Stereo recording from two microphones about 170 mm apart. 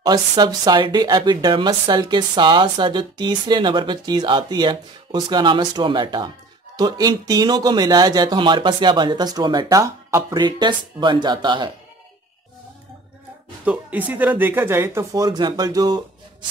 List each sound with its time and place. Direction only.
0.0 s speech: 25° right (ahead or behind)
13.7 s speech: 10° right (ahead or behind)